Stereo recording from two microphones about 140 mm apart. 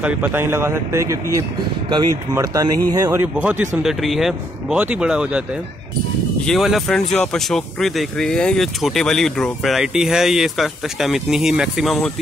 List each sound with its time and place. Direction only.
0.0 s speech: 15° right (ahead or behind)
3.1 s speech: 10° right (ahead or behind)
6.4 s speech: centre (ahead or behind)